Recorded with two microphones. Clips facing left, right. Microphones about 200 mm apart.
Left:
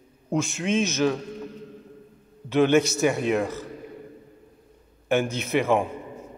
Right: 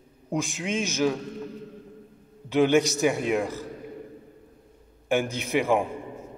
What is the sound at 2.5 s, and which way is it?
Speech, 15° right (ahead or behind).